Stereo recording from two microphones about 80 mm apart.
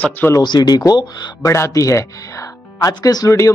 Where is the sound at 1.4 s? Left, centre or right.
Left.